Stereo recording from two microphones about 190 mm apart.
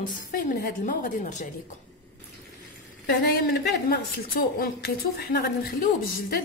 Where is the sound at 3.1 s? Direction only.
60° left (ahead or behind).